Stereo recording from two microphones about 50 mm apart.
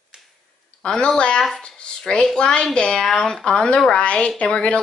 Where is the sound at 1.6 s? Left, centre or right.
Centre.